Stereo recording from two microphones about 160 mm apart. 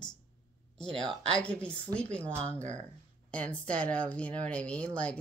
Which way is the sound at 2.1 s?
45° right (ahead or behind).